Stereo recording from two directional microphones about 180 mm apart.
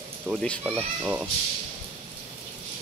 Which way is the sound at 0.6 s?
10° right (ahead or behind).